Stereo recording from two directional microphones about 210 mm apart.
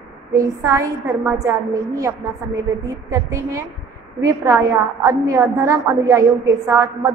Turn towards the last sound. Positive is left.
turn(degrees=-15)  # may be behind; listen again after turning